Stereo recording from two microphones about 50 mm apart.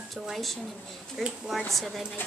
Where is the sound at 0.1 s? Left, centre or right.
Centre.